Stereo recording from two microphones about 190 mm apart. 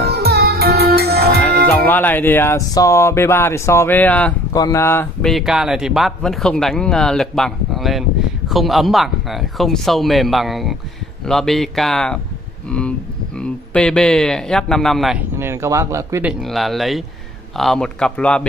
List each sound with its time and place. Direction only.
0.0 s music: 55° right (ahead or behind)
1.4 s speech: 10° left (ahead or behind)
5.2 s speech: centre (ahead or behind)
15.3 s speech: 15° right (ahead or behind); by 18.4 s 5° left (ahead or behind)